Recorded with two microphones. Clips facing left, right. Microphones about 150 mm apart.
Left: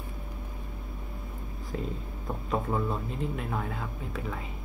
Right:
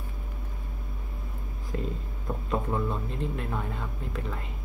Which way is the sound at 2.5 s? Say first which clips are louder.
Even; centre (ahead or behind).